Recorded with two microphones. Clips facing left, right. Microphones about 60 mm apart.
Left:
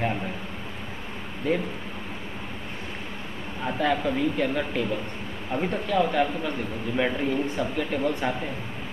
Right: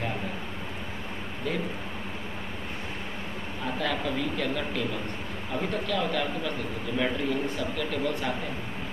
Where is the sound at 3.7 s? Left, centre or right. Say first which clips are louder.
Left 5 dB; left.